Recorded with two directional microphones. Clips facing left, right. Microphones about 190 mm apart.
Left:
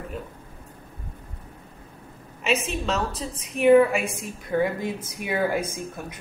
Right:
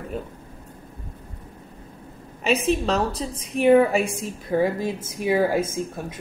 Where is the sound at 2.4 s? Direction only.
35° right (ahead or behind).